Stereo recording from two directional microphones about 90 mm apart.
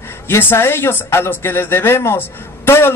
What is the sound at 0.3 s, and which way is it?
A man's voice, 25° left (ahead or behind).